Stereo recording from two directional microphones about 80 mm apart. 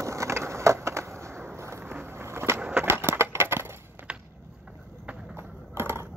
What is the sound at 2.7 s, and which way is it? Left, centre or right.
Crushing, right.